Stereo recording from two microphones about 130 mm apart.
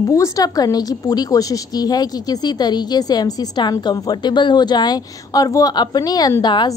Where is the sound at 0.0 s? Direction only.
25° left (ahead or behind).